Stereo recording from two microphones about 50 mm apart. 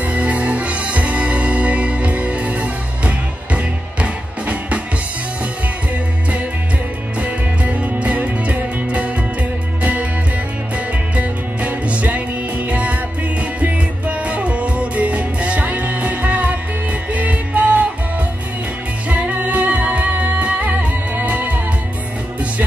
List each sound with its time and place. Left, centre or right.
0.0 s music: right
7.2 s music: right
11.1 s music: right
19.0 s music: right